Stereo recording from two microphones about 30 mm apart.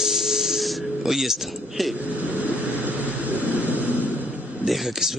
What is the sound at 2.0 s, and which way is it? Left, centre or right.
Vehicle, right.